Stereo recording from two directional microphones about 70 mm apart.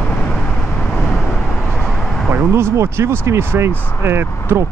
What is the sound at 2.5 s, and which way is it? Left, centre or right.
Speech, right.